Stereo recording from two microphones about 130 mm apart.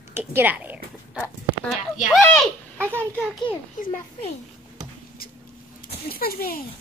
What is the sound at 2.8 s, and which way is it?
Speech, 15° right (ahead or behind).